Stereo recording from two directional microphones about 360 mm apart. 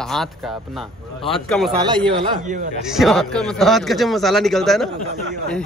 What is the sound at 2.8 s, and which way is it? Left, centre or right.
Speech, centre.